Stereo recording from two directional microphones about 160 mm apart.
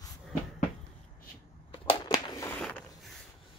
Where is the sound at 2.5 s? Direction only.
10° left (ahead or behind).